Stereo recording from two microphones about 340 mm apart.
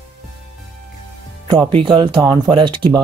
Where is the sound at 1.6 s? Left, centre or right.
Centre.